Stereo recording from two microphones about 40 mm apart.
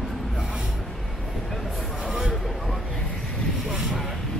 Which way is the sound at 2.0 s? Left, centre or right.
Centre.